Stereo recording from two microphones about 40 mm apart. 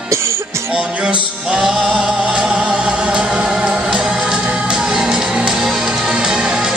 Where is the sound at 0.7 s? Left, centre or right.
Right.